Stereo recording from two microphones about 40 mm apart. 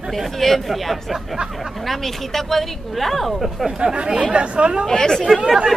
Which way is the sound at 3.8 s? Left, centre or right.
Right.